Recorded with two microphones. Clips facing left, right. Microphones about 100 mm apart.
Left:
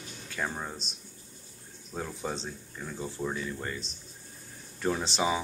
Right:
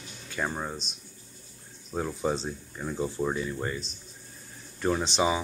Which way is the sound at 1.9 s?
15° right (ahead or behind).